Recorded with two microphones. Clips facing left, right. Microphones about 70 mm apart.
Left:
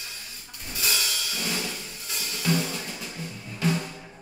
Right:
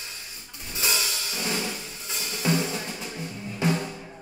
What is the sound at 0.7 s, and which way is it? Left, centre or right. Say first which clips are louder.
Music: right 1 dB; right.